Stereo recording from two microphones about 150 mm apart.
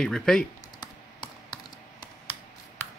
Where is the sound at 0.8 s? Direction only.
30° left (ahead or behind).